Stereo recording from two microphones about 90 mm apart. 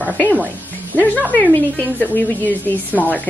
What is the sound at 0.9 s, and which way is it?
Speech, 20° left (ahead or behind).